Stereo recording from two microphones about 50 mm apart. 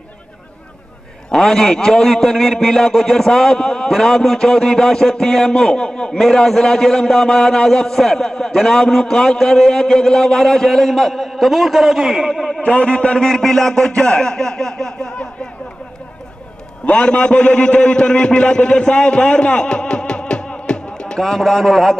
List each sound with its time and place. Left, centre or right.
1.3 s a man's voice: centre
12.6 s a man's voice: left
16.8 s a man's voice: left; by 21.9 s centre